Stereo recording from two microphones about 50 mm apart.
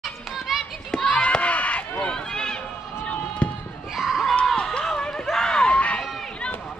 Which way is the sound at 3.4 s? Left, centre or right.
Left.